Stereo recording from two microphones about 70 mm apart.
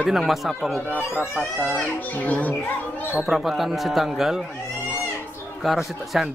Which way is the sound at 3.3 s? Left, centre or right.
Centre.